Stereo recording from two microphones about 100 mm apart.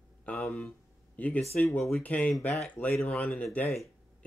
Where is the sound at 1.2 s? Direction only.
15° left (ahead or behind).